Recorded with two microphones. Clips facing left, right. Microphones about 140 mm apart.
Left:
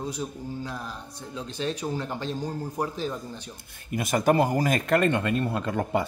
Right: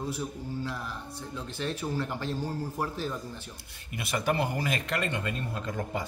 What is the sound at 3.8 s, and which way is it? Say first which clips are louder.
Speech: left 7 dB; 45° left (ahead or behind).